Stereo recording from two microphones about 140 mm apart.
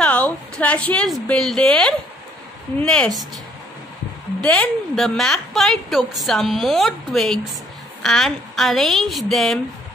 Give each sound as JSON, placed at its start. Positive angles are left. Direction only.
{"t": 0.0, "sound": "a woman's voice", "side_deg": 10}
{"t": 4.4, "sound": "a woman's voice", "side_deg": 5}